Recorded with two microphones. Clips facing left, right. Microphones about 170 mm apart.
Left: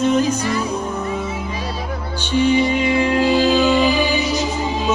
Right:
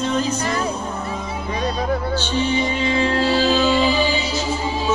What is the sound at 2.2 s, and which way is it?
Music, 15° left (ahead or behind).